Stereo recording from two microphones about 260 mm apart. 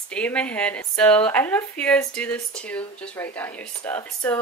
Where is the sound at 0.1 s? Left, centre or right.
Centre.